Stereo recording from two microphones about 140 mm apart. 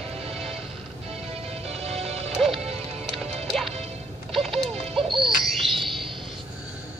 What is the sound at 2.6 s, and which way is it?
Music, 50° right (ahead or behind).